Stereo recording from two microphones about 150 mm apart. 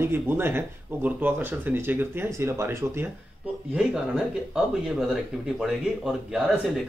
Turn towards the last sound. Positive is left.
turn(degrees=-5)  # may be behind; listen again after turning